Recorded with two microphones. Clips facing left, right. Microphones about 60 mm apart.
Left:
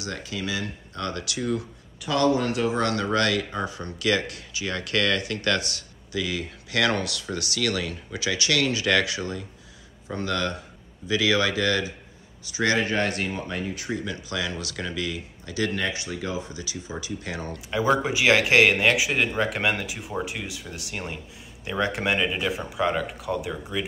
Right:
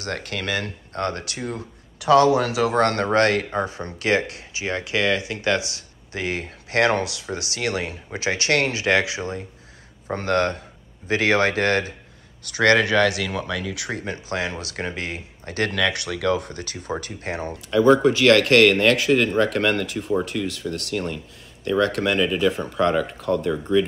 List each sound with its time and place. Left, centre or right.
0.0 s speech: right
2.0 s speech: right
2.8 s speech: right
6.1 s speech: right
10.0 s speech: right
12.4 s speech: right
13.9 s speech: right
15.7 s speech: right
17.2 s speech: right
17.9 s speech: centre